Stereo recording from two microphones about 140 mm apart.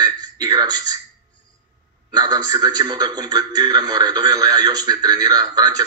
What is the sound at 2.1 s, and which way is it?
A man's voice, 30° right (ahead or behind).